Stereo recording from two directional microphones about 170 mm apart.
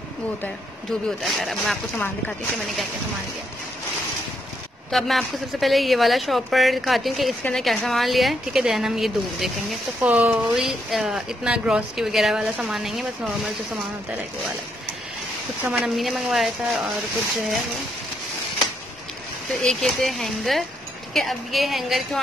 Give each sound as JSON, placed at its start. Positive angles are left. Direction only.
{"t": 1.2, "sound": "a woman's voice", "side_deg": 0}
{"t": 4.9, "sound": "a woman's voice", "side_deg": 0}
{"t": 15.6, "sound": "a woman's voice", "side_deg": -5}
{"t": 19.6, "sound": "a woman's voice", "side_deg": 5}